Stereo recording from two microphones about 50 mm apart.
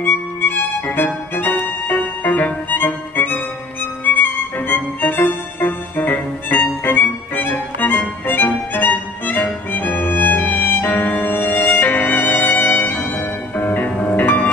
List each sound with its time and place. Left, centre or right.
0.0 s violin: left
4.0 s music: left